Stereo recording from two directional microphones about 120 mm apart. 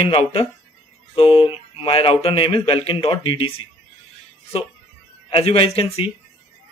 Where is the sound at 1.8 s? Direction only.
50° left (ahead or behind).